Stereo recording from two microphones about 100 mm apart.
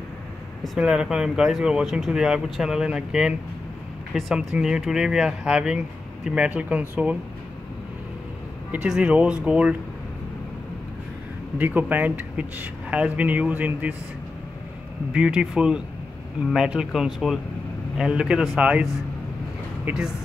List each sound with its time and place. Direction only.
0.7 s speech: 5° right (ahead or behind)
8.8 s speech: 10° right (ahead or behind)
11.5 s speech: 15° right (ahead or behind)
15.1 s speech: 10° right (ahead or behind)